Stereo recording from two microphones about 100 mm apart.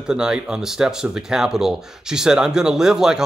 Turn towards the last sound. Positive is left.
turn(degrees=-5)  # may be behind; listen again after turning